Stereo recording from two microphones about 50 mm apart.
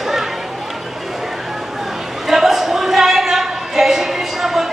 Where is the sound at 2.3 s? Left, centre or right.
Centre.